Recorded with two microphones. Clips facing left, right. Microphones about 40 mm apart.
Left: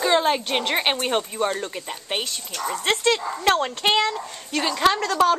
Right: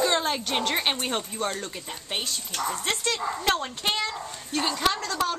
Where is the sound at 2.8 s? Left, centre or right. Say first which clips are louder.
Left 6 dB; left.